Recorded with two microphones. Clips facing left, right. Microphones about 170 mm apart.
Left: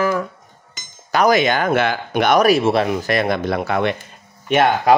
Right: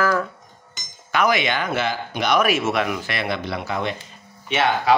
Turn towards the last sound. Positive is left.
turn(degrees=50)  # may be behind; listen again after turning